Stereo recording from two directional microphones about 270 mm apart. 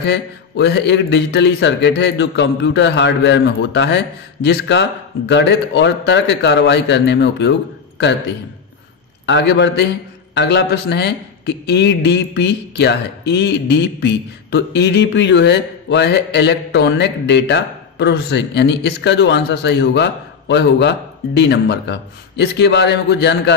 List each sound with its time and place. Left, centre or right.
0.0 s a man's voice: left
9.2 s a man's voice: left